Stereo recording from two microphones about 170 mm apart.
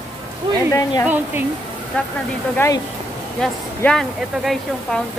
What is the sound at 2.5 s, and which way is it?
Speech, 20° left (ahead or behind).